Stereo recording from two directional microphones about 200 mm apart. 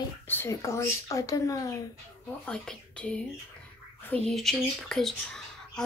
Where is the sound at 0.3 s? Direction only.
10° left (ahead or behind).